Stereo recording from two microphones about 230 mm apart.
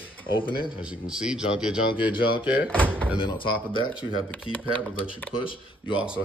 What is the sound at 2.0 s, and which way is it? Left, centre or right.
Speech, left.